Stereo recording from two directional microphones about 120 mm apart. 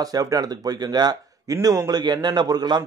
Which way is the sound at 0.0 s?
30° right (ahead or behind).